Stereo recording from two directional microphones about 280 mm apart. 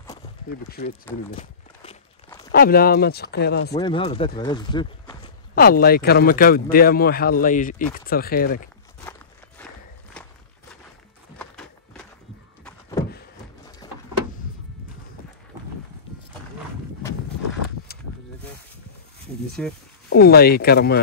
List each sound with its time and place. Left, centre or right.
0.5 s speech: left
1.3 s walk: left
2.5 s speech: left
3.8 s speech: centre
5.5 s speech: left
10.2 s walk: centre
11.3 s a sound: centre
13.8 s a sound: centre
19.6 s speech: centre
20.1 s speech: left